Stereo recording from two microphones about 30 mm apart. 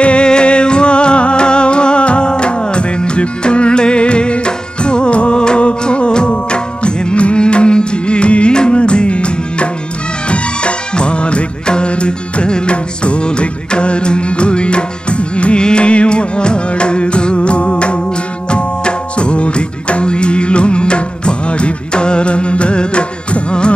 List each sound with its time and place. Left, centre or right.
0.0 s music: left
10.3 s music of bollywood: left
12.4 s music: left